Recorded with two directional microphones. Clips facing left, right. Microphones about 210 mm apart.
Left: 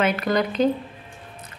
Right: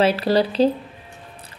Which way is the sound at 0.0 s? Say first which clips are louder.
Right 4 dB; 30° right (ahead or behind).